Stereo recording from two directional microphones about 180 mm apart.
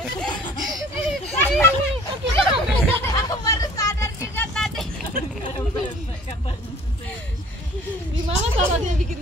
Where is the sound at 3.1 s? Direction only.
20° left (ahead or behind).